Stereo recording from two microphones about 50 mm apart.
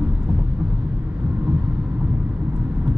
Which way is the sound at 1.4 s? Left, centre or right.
Right.